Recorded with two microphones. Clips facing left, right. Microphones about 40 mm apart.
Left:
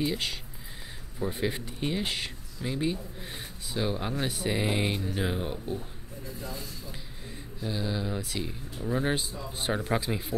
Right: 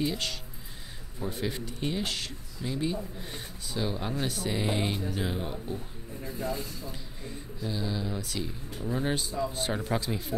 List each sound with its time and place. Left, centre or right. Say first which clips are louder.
0.0 s speech: left 1 dB; centre
3.2 s speech: even; centre
6.2 s speech: right 6 dB; right
7.6 s speech: left 1 dB; centre